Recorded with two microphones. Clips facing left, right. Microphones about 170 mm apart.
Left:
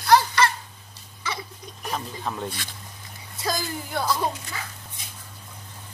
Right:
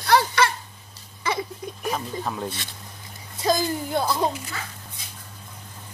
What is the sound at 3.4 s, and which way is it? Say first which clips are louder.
Speech: right 6 dB; 20° right (ahead or behind).